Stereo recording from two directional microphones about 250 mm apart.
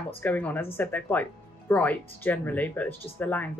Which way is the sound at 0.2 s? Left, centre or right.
Centre.